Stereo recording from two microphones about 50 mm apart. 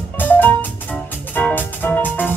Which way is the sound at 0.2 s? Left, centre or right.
Left.